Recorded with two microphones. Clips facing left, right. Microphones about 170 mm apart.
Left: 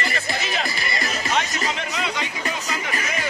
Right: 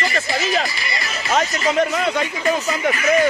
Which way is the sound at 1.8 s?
45° right (ahead or behind).